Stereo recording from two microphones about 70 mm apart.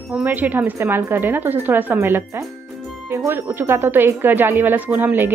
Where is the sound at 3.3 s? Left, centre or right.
Right.